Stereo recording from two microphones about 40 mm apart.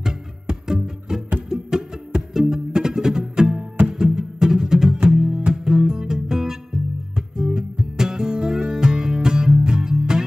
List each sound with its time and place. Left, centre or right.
0.0 s music: centre